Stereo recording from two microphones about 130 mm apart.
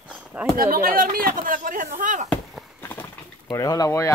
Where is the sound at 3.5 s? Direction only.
30° left (ahead or behind).